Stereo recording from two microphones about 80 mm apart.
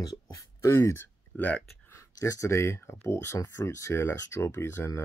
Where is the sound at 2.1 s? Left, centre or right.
Left.